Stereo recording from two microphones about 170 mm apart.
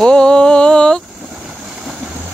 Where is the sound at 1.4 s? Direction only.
Centre (ahead or behind).